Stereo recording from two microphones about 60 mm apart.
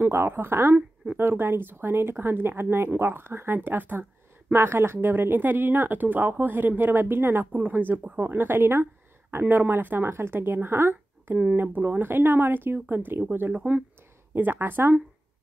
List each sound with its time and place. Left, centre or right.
0.1 s speech: right
10.0 s speech: right
11.5 s speech: right
13.6 s speech: right
14.3 s speech: right